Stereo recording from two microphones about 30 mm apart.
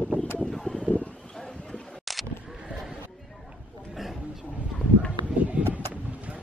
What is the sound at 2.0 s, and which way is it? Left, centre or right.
Vehicle, centre.